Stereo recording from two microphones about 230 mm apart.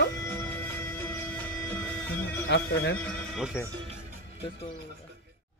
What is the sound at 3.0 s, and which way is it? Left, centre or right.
Speech, centre.